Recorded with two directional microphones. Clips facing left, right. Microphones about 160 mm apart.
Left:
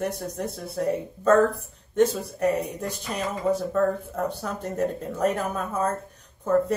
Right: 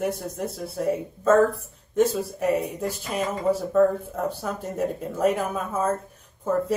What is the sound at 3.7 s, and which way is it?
Speech, 5° right (ahead or behind).